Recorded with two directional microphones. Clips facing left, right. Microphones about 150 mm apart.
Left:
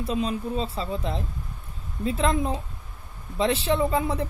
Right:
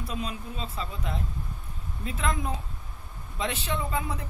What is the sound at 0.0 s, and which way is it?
A man's voice, 30° left (ahead or behind).